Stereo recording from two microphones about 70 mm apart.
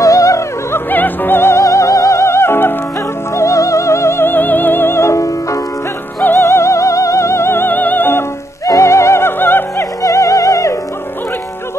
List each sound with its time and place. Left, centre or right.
0.0 s music: left
0.7 s music: left
1.6 s music: left
3.3 s music: left
8.6 s music: left
10.0 s music: left